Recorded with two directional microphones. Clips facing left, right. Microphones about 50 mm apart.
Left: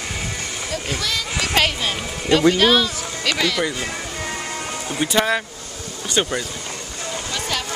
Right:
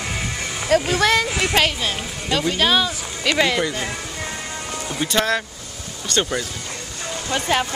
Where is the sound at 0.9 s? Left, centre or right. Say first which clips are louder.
Right 8 dB; right.